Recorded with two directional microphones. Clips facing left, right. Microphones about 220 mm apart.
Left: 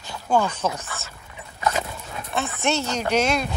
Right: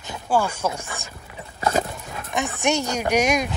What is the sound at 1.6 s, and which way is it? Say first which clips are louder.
Dog: right 3 dB; 30° right (ahead or behind).